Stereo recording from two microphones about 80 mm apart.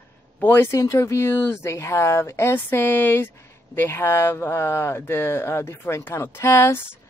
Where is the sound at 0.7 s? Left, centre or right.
Left.